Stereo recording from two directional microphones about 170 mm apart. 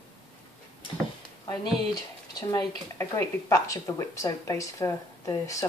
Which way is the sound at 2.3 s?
20° left (ahead or behind).